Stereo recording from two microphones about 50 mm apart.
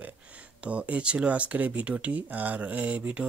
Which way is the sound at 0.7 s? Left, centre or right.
Right.